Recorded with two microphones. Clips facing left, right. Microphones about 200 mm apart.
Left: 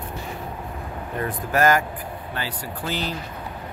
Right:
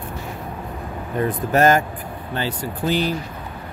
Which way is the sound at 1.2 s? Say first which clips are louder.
Right 4 dB; 25° right (ahead or behind).